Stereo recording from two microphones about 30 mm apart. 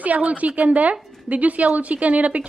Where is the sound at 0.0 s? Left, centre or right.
Right.